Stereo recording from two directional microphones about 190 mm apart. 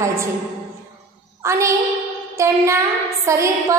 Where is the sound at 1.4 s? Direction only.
15° right (ahead or behind).